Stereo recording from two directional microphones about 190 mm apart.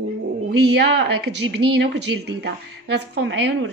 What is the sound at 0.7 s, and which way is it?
A woman's voice, 60° right (ahead or behind).